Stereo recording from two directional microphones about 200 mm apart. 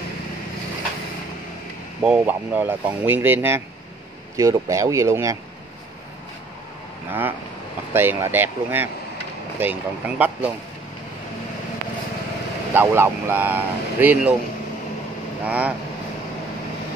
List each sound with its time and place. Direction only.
2.0 s speech: 10° right (ahead or behind)
7.1 s speech: 10° right (ahead or behind)
12.7 s speech: 10° right (ahead or behind)
15.4 s speech: 5° right (ahead or behind)